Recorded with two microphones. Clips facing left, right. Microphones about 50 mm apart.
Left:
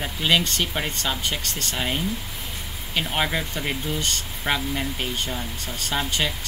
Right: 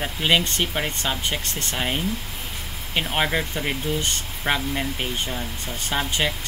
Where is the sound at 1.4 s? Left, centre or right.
Right.